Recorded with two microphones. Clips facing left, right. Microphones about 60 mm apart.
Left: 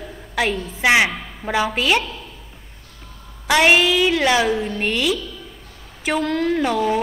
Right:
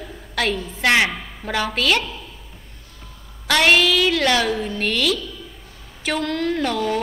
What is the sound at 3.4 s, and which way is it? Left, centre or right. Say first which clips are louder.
A woman's voice: left 1 dB; centre.